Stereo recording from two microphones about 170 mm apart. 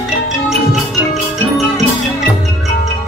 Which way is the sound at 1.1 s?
Centre (ahead or behind).